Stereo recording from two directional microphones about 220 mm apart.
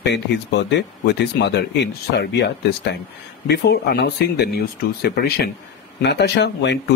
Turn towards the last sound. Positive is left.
turn(degrees=50)  # may be behind; listen again after turning